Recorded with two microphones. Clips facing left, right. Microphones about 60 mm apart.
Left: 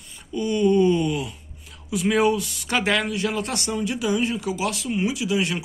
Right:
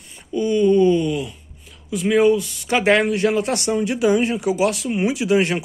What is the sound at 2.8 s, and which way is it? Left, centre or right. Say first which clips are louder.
Speech: right 9 dB; right.